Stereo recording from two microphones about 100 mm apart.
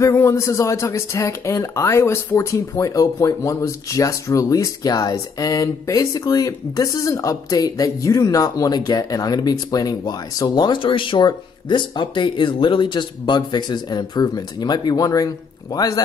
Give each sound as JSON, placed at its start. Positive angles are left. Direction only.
{"t": 0.0, "sound": "speech", "side_deg": 30}